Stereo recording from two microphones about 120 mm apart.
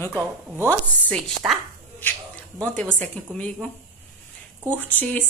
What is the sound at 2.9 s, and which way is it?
Speech, 10° left (ahead or behind).